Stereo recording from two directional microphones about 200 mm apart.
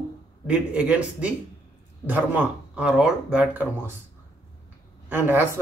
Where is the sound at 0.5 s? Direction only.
5° right (ahead or behind).